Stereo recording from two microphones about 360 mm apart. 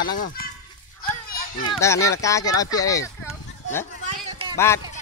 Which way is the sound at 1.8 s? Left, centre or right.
Centre.